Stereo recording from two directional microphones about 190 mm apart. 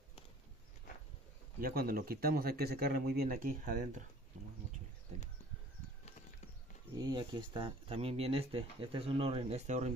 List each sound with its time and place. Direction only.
1.6 s speech: 50° right (ahead or behind)
7.0 s speech: 25° right (ahead or behind)